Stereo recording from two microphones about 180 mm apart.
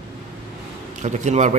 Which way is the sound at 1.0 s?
40° right (ahead or behind).